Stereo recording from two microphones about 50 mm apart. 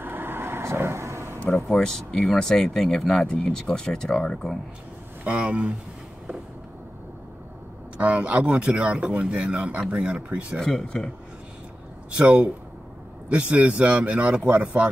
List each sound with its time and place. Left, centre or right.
0.0 s vehicle: right
1.7 s speech: centre
5.2 s speech: right
8.0 s speech: right
10.6 s speech: centre
12.2 s speech: right